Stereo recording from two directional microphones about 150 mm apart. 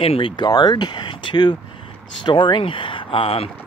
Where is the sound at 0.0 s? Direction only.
35° left (ahead or behind).